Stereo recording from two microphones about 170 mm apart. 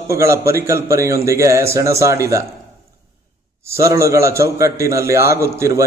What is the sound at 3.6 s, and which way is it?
A man's voice, 15° right (ahead or behind).